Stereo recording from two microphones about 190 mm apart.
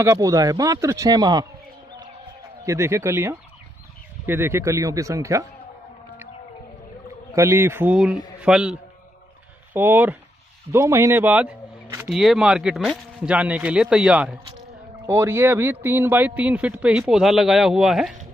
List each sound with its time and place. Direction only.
0.0 s a man's voice: 15° right (ahead or behind)
2.6 s a man's voice: 15° right (ahead or behind)
7.3 s a man's voice: 15° right (ahead or behind)
9.8 s a man's voice: 10° right (ahead or behind)